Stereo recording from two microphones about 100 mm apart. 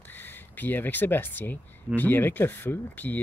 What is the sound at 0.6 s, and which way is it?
Speech, 20° left (ahead or behind).